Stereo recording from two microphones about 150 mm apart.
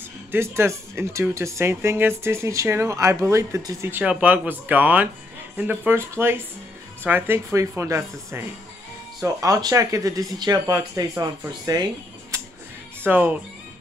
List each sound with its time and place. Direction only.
0.3 s speech: 15° right (ahead or behind)
13.0 s speech: 10° right (ahead or behind)